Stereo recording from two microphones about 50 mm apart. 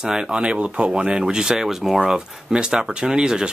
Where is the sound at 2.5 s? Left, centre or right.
Centre.